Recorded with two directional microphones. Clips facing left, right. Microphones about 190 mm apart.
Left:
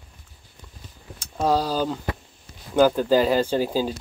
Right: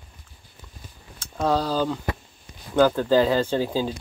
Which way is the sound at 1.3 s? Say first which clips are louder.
Left 1 dB; 10° left (ahead or behind).